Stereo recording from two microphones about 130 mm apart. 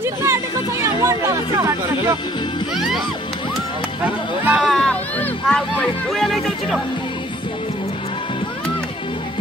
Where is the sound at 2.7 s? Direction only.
Centre (ahead or behind).